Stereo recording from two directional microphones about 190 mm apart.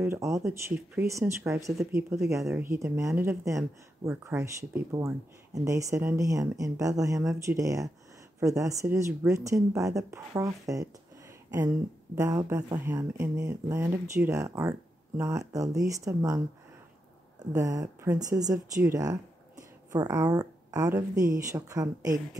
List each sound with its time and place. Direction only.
0.0 s speech: 15° right (ahead or behind)
17.5 s speech: 20° right (ahead or behind)